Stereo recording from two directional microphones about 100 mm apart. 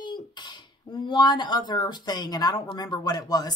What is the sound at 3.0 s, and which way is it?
Speech, 40° left (ahead or behind).